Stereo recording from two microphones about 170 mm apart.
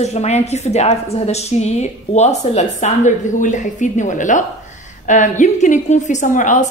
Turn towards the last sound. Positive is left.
turn(degrees=50)  # may be behind; listen again after turning